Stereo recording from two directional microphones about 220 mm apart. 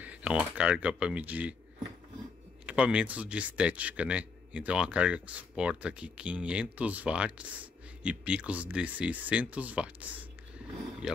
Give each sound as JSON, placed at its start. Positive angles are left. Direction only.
{"t": 0.0, "sound": "speech", "side_deg": -5}
{"t": 2.6, "sound": "speech", "side_deg": -5}